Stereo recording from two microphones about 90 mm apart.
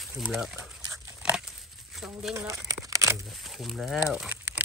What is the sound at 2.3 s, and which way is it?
Crumpling, 40° right (ahead or behind).